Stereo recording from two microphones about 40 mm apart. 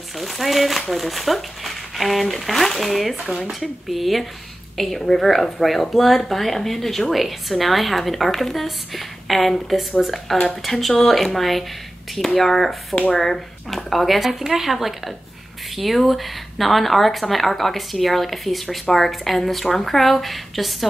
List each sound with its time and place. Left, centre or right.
0.2 s a woman's voice: centre
10.3 s speech: left
10.6 s a woman's voice: centre